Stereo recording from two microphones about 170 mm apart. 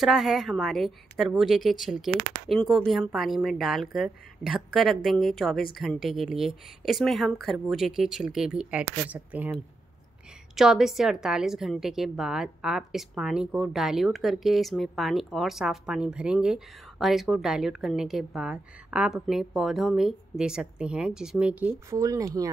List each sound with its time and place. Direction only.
0.0 s a woman's voice: centre (ahead or behind)
21.9 s speech: 20° right (ahead or behind)